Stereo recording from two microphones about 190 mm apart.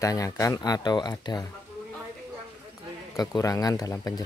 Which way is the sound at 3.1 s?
20° left (ahead or behind).